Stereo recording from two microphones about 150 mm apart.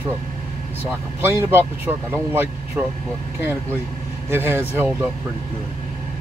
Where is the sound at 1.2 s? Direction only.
15° right (ahead or behind).